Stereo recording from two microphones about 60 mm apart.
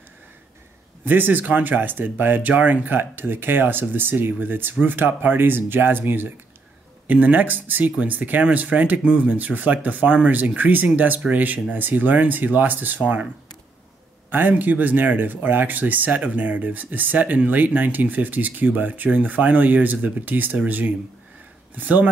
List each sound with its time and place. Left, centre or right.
1.0 s speech: right
14.3 s speech: right